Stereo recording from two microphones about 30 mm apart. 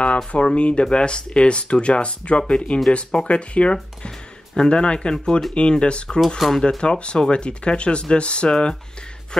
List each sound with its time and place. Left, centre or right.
0.3 s speech: left
4.6 s speech: left
6.2 s speech: centre
6.8 s speech: left
9.3 s a sound: centre